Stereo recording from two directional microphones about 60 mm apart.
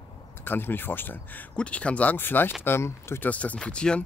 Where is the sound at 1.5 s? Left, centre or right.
Centre.